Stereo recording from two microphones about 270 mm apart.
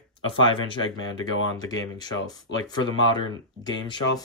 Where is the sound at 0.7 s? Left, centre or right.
Centre.